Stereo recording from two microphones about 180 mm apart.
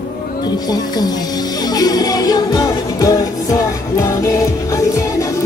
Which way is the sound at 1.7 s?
20° left (ahead or behind).